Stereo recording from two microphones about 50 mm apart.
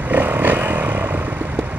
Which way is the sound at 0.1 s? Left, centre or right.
Right.